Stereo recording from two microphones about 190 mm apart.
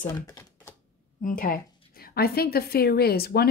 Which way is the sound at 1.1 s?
45° left (ahead or behind).